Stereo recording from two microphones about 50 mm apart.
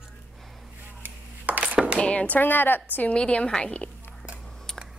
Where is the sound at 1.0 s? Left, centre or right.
Right.